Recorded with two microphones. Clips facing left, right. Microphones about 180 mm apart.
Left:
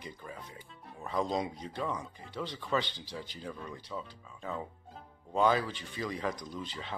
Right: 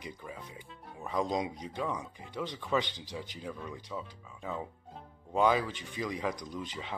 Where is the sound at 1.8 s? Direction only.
Centre (ahead or behind).